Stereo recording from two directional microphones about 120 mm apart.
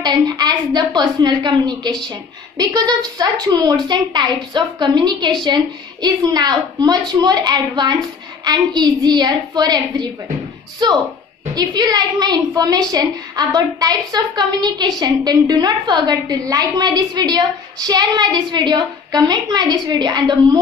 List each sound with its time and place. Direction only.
0.0 s a woman's voice: 35° right (ahead or behind)